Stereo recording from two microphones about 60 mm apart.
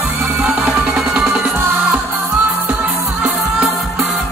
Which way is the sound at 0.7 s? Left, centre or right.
Centre.